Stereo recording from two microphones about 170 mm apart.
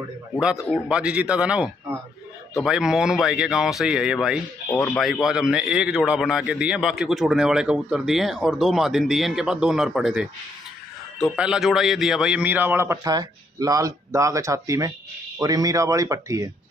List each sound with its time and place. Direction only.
0.7 s a man's voice: 5° right (ahead or behind)
11.2 s a man's voice: 5° right (ahead or behind)